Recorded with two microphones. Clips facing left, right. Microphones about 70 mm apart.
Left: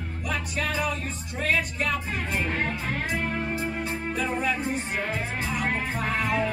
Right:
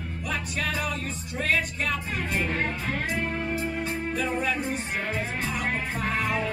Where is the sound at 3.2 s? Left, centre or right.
Centre.